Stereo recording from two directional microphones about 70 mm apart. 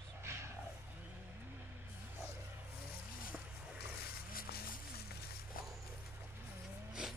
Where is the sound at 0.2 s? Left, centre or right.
Right.